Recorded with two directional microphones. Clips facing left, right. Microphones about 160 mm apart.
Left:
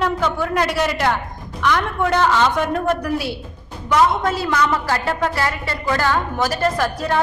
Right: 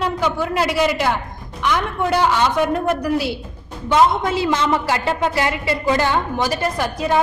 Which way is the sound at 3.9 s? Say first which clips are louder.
Right 1 dB; 20° right (ahead or behind).